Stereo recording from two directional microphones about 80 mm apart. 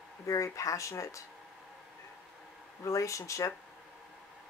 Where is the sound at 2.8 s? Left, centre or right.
Left.